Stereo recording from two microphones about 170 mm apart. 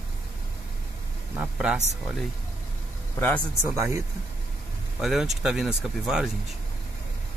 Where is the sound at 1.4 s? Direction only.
5° right (ahead or behind).